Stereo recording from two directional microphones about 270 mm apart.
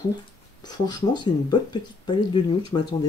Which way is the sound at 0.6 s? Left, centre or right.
Centre.